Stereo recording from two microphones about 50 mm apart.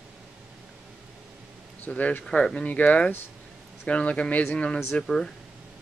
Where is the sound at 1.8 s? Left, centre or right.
Left.